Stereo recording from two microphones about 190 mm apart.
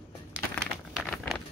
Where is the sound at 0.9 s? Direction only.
Centre (ahead or behind).